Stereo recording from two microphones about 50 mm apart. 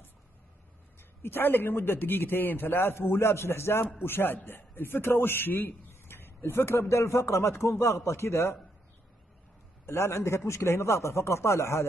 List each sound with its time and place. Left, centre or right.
1.2 s a man's voice: left
9.8 s speech: left